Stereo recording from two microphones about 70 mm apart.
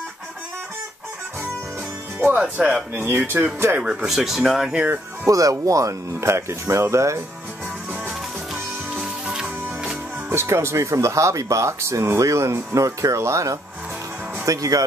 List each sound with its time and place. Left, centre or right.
2.1 s speech: right
3.8 s speech: centre
5.2 s speech: right
9.0 s music: centre
10.3 s speech: right